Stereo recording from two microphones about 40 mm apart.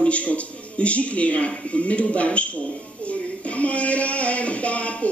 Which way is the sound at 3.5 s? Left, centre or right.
Left.